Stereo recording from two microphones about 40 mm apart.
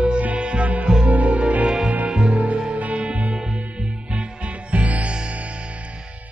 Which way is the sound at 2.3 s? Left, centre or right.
Right.